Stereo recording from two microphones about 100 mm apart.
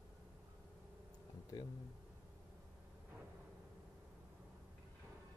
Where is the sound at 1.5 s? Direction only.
45° left (ahead or behind).